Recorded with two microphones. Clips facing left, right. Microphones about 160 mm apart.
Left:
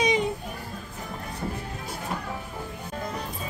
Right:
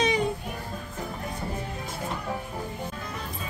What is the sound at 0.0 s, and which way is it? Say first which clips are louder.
Children playing: left 1 dB; 20° left (ahead or behind).